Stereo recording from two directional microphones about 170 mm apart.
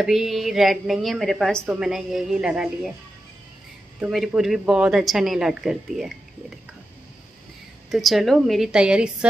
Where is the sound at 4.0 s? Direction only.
Centre (ahead or behind).